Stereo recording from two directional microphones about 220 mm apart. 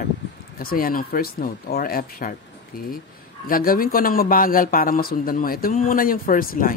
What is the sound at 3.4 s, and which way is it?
A man's voice, 40° left (ahead or behind).